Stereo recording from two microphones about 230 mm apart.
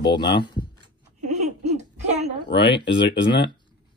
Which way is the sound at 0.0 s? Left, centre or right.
Left.